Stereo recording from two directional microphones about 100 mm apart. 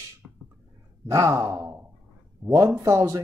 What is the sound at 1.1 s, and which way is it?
Speech, 30° right (ahead or behind).